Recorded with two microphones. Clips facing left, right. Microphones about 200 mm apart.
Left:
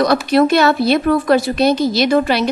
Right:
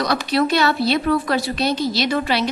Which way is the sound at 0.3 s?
50° left (ahead or behind).